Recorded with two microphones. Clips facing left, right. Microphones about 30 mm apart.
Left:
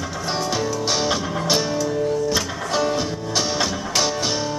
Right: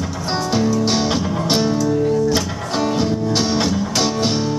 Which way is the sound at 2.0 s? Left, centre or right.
Centre.